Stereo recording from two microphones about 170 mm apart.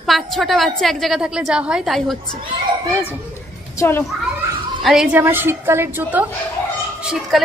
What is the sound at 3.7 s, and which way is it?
Speech, 15° left (ahead or behind).